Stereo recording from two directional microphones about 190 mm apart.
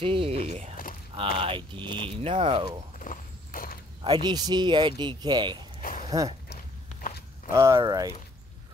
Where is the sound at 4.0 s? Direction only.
25° right (ahead or behind).